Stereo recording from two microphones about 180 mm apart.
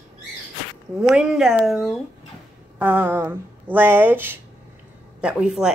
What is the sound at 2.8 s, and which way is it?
Speech, 10° right (ahead or behind).